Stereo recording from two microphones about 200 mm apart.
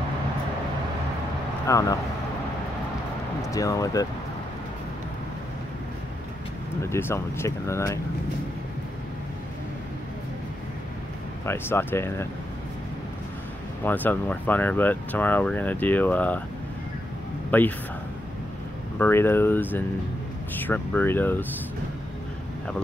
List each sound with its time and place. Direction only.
1.7 s speech: 15° left (ahead or behind)
3.4 s speech: 15° left (ahead or behind)
6.8 s speech: 10° left (ahead or behind)
11.4 s speech: 10° left (ahead or behind)
13.8 s speech: 10° left (ahead or behind)
17.5 s speech: 10° left (ahead or behind)
18.9 s speech: 10° left (ahead or behind)